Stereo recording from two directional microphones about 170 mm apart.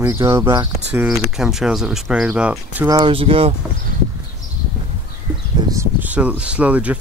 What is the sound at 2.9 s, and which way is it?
Speech, 25° right (ahead or behind).